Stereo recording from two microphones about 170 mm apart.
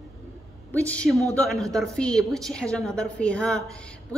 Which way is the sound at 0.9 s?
5° left (ahead or behind).